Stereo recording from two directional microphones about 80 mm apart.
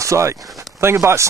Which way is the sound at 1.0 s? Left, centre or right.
Right.